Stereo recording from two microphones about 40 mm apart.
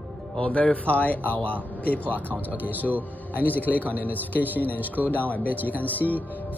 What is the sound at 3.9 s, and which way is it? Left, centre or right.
Speech, left.